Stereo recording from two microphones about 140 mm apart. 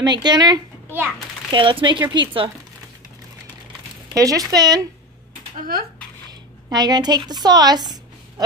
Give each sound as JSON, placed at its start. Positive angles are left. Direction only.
{"t": 0.0, "sound": "speech", "side_deg": -30}
{"t": 4.1, "sound": "speech", "side_deg": -25}
{"t": 5.7, "sound": "speech", "side_deg": -90}
{"t": 6.7, "sound": "a woman's voice", "side_deg": -30}